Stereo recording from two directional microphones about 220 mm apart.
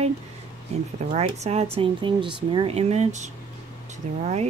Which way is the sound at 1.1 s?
30° right (ahead or behind).